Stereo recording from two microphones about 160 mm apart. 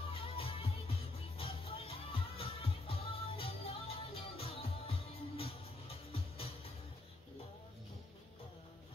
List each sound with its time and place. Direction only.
0.0 s music: 35° left (ahead or behind)